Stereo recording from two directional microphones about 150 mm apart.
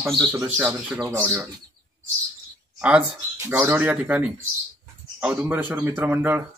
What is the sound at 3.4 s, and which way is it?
Speech, 15° right (ahead or behind).